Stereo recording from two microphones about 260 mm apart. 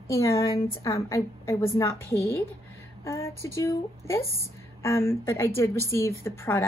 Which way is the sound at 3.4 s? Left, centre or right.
Centre.